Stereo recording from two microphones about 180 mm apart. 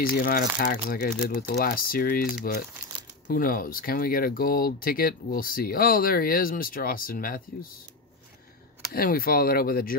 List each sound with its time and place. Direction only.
0.1 s speech: 55° left (ahead or behind)
8.9 s speech: 55° left (ahead or behind)